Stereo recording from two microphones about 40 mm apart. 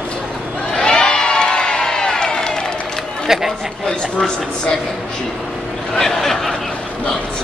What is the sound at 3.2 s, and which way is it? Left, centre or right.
Speech, centre.